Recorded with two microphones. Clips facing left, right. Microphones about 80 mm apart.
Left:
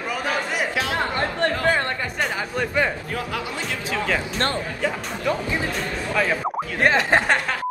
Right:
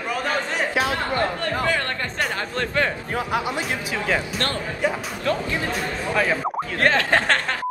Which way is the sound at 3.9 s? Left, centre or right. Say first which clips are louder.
Even; centre.